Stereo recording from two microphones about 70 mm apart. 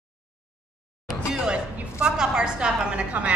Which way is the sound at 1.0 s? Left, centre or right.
Centre.